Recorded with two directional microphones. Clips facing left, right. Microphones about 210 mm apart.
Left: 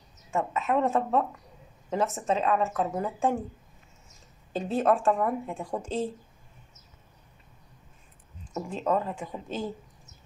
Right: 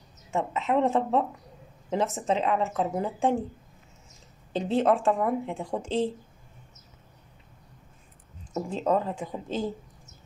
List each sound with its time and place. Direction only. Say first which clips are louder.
0.3 s speech: right 1 dB; 20° right (ahead or behind)
4.5 s speech: right 1 dB; 20° right (ahead or behind)
8.6 s speech: right 2 dB; 25° right (ahead or behind)